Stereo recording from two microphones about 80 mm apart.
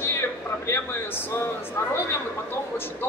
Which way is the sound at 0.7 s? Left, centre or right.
Left.